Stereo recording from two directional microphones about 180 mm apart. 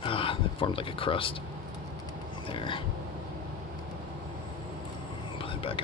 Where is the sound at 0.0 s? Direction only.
30° left (ahead or behind).